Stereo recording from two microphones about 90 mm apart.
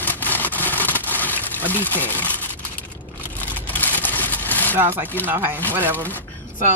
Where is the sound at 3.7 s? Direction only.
20° left (ahead or behind).